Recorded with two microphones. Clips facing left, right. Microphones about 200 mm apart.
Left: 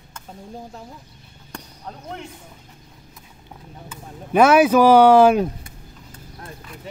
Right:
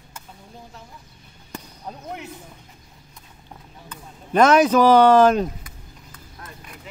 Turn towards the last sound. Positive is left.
turn(degrees=10)  # may be behind; listen again after turning